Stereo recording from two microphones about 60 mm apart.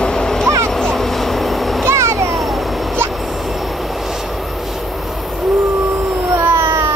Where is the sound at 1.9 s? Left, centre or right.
Right.